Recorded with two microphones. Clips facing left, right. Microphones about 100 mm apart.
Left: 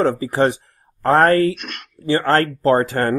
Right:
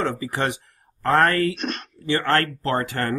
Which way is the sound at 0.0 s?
30° left (ahead or behind).